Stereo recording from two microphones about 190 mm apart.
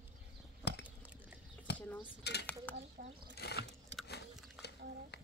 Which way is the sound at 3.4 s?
60° left (ahead or behind).